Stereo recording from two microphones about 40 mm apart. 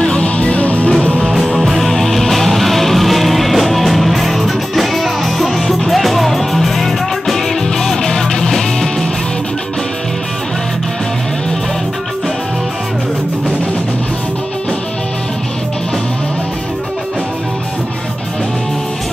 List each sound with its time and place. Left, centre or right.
0.0 s music: left
1.3 s music: centre